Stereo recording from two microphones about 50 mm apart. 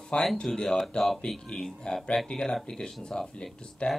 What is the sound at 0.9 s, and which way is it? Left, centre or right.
Speech, centre.